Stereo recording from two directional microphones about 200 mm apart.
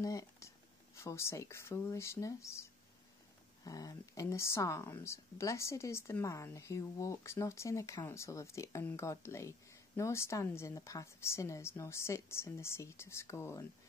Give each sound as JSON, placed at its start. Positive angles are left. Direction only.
{"t": 0.0, "sound": "a sound", "side_deg": 15}
{"t": 0.9, "sound": "speech", "side_deg": 15}
{"t": 3.6, "sound": "speech", "side_deg": 20}